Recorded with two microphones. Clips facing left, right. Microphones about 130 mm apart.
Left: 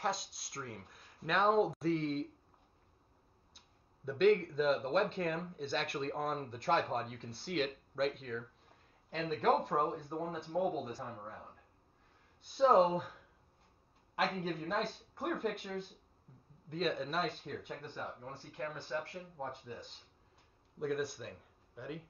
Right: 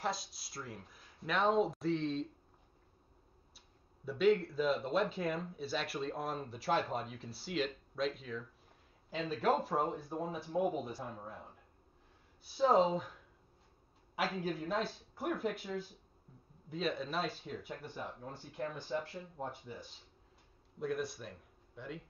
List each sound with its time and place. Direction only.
0.0 s speech: centre (ahead or behind)
3.5 s speech: centre (ahead or behind)
18.4 s speech: 20° right (ahead or behind)
19.3 s speech: 5° right (ahead or behind)